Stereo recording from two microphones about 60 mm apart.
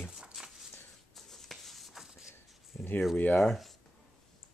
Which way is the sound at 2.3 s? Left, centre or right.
Left.